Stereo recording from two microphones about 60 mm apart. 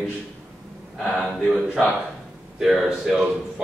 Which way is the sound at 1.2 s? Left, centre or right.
Centre.